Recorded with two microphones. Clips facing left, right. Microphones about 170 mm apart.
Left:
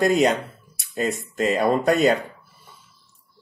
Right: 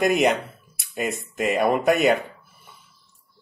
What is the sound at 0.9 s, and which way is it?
Speech, 20° right (ahead or behind).